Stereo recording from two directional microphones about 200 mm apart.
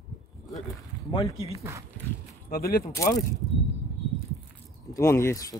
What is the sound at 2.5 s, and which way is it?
Speech, 45° left (ahead or behind).